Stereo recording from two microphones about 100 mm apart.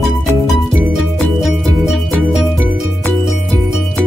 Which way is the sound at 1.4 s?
Centre (ahead or behind).